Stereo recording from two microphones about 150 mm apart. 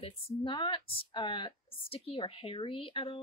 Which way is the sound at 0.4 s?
35° left (ahead or behind).